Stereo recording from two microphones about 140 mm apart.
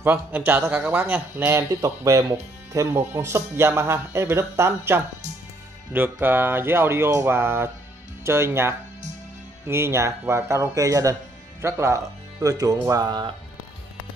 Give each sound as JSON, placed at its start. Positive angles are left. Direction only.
{"t": 0.0, "sound": "speech", "side_deg": -15}